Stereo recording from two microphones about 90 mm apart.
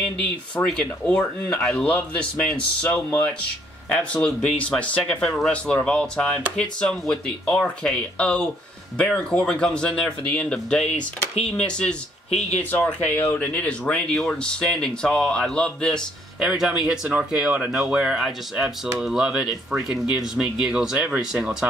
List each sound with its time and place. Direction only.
0.2 s speech: 10° left (ahead or behind)
16.3 s speech: 5° right (ahead or behind)